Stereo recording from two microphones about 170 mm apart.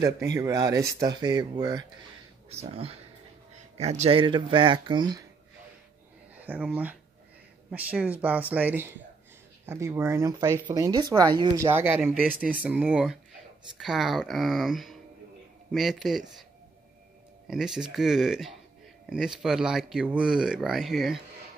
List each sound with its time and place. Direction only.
0.0 s speech: 20° right (ahead or behind)
2.5 s speech: 35° right (ahead or behind)
6.4 s speech: 10° right (ahead or behind)
12.2 s speech: 5° left (ahead or behind)
12.6 s speech: 5° right (ahead or behind)
17.5 s speech: 5° right (ahead or behind)